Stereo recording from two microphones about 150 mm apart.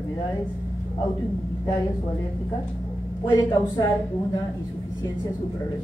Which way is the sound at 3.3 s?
25° left (ahead or behind).